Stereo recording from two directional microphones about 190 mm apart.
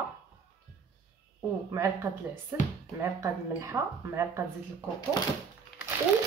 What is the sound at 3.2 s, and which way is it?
A woman's voice, 15° right (ahead or behind).